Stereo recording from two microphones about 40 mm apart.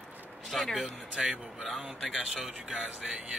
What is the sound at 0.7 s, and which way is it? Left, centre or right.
Speech, centre.